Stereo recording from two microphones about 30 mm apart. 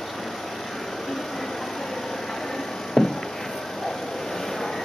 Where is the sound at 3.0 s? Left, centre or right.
Centre.